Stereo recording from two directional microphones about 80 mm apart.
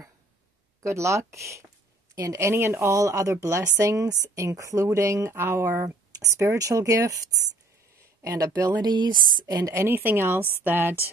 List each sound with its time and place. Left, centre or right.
0.8 s speech: right
8.6 s a woman's voice: right
9.7 s a woman's voice: right